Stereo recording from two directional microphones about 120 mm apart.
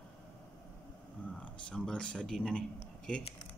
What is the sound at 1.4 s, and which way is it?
Speech, 10° left (ahead or behind).